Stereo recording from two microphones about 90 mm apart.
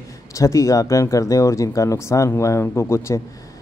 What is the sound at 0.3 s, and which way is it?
A man's voice, 35° left (ahead or behind).